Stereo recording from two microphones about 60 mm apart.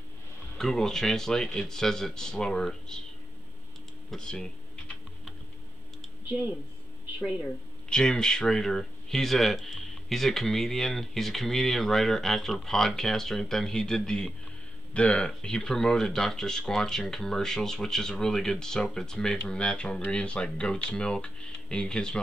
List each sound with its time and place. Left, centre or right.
0.6 s speech: centre
4.1 s speech: centre
6.2 s speech: right
7.2 s speech: right
7.4 s speech: centre